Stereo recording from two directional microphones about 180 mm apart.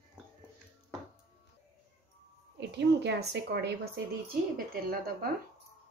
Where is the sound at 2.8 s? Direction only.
70° right (ahead or behind).